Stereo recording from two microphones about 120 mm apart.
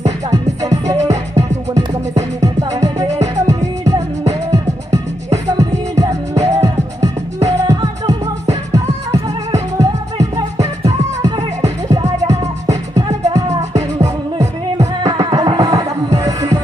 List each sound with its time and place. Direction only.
0.3 s music: 30° right (ahead or behind)
2.1 s music: 25° right (ahead or behind)
3.1 s music: 70° right (ahead or behind)
3.4 s music: 30° right (ahead or behind)
13.6 s music: 70° right (ahead or behind)
14.0 s music: 25° right (ahead or behind)